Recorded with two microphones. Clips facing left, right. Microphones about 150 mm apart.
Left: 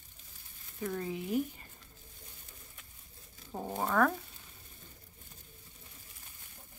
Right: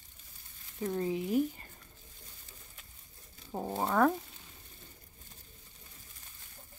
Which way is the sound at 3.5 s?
10° right (ahead or behind).